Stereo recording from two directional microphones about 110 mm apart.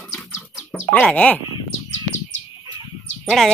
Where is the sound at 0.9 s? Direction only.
10° left (ahead or behind).